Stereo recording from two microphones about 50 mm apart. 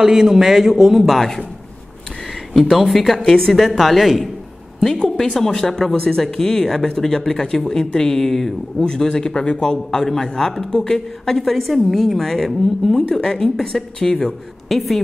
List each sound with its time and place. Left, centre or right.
0.0 s speech: centre
2.7 s a woman's voice: centre
4.9 s a woman's voice: centre
14.7 s a woman's voice: centre